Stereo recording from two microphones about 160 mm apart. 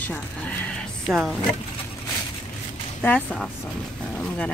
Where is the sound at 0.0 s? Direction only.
10° left (ahead or behind).